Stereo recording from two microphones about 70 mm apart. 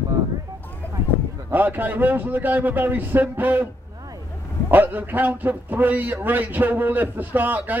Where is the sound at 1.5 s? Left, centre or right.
Right.